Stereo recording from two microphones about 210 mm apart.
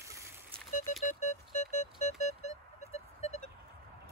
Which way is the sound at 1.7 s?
35° left (ahead or behind).